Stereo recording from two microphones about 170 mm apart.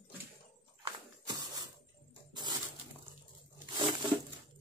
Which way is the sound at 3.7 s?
25° right (ahead or behind).